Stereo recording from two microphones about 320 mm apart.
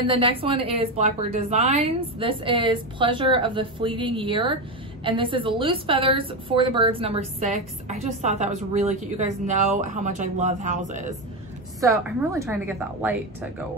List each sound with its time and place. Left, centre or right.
0.0 s a woman's voice: centre
11.8 s a woman's voice: centre